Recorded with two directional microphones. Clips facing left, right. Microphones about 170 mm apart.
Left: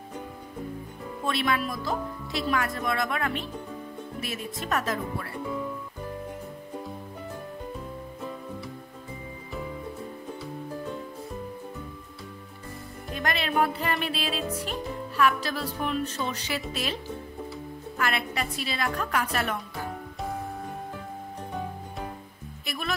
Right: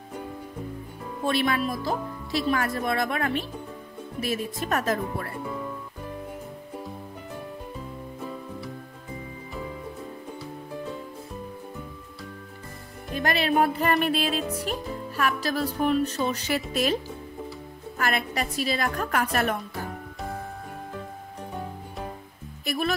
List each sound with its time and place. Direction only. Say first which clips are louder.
1.2 s speech: right 3 dB; 35° right (ahead or behind)
13.1 s music: right 4 dB; 40° right (ahead or behind)
22.7 s music: right 6 dB; 40° right (ahead or behind)